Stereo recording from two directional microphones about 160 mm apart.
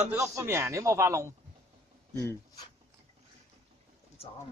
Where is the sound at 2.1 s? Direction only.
20° left (ahead or behind).